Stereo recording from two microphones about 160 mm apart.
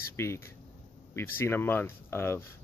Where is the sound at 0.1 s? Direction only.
15° left (ahead or behind).